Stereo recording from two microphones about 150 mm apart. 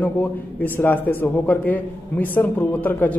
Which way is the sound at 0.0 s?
10° left (ahead or behind).